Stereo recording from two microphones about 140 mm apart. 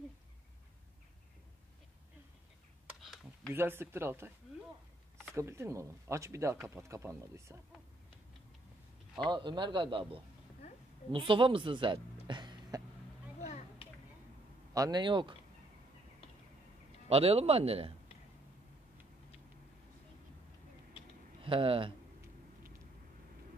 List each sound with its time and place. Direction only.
3.0 s computer keyboard: centre (ahead or behind)
3.5 s speech: 15° right (ahead or behind)
5.3 s speech: 20° right (ahead or behind)
9.2 s a man's voice: 35° right (ahead or behind)
14.7 s a man's voice: 25° right (ahead or behind)
17.1 s speech: 45° right (ahead or behind)
21.4 s speech: 40° right (ahead or behind)